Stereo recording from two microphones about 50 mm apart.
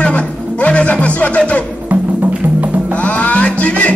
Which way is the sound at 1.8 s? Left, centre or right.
Right.